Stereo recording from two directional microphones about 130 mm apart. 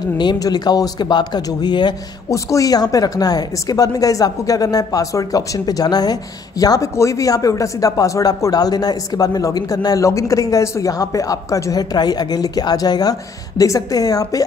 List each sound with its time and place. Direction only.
0.2 s speech: 35° left (ahead or behind)